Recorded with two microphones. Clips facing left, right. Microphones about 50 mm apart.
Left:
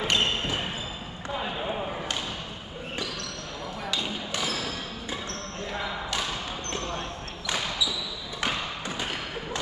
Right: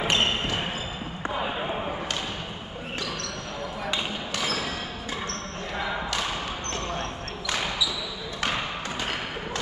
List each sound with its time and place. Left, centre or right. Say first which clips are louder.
0.0 s basketball bounce: right 1 dB; centre